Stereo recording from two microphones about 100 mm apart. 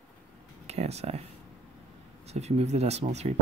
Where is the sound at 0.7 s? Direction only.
90° right.